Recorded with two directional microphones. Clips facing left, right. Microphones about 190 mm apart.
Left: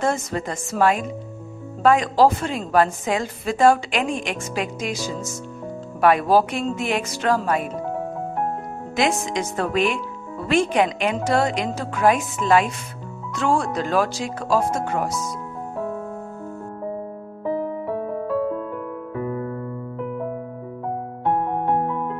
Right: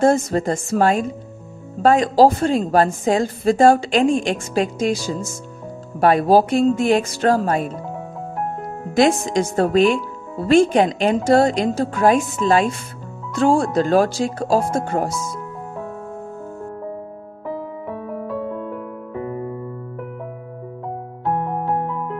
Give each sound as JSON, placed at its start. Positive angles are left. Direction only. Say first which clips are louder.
{"t": 0.0, "sound": "speech", "louder": "right 7 dB", "side_deg": -35}
{"t": 8.9, "sound": "speech", "louder": "right 6 dB", "side_deg": -35}